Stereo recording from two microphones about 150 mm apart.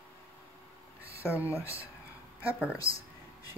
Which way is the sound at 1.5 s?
20° left (ahead or behind).